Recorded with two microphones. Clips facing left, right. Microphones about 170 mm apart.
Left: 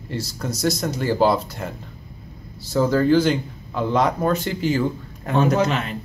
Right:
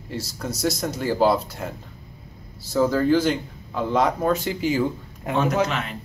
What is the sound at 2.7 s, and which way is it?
Speech, centre (ahead or behind).